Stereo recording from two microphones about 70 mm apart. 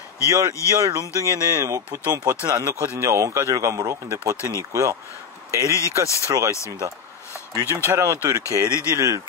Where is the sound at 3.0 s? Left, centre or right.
Right.